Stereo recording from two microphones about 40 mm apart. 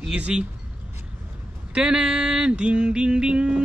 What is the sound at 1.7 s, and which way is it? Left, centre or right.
A man's voice, right.